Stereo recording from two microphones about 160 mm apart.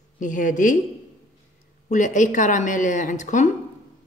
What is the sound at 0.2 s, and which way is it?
Speech, 55° left (ahead or behind).